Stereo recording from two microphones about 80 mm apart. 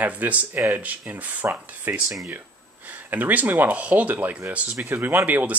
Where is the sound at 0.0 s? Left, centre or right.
Right.